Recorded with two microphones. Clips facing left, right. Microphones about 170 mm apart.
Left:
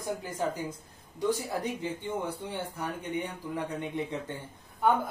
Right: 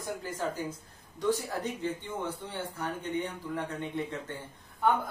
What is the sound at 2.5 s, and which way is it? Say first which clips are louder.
Speech: left 1 dB; 15° left (ahead or behind).